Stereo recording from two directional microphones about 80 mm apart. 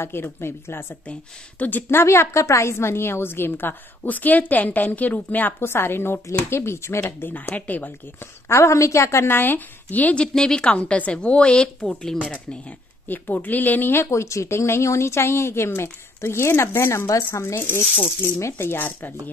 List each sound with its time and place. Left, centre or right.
0.0 s a woman's voice: left
8.5 s a woman's voice: left; by 12.3 s centre
12.3 s speech: centre; by 17.6 s left
17.9 s a woman's voice: left